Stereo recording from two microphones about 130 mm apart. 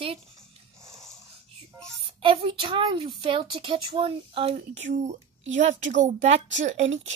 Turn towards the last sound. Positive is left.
turn(degrees=-60)  # may be behind; listen again after turning